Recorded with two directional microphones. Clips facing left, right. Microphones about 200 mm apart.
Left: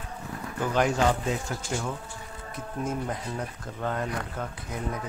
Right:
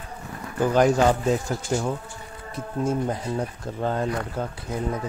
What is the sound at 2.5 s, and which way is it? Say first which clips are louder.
Speech: right 6 dB; 30° right (ahead or behind).